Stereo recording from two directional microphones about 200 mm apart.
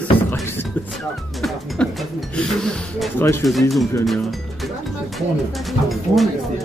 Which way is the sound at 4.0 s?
Centre (ahead or behind).